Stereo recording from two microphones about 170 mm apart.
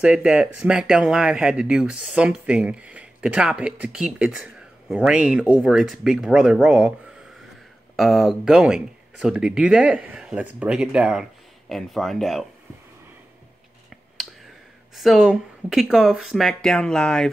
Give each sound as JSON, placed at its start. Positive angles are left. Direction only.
{"t": 0.0, "sound": "speech", "side_deg": -5}
{"t": 7.9, "sound": "speech", "side_deg": 0}
{"t": 15.0, "sound": "speech", "side_deg": 0}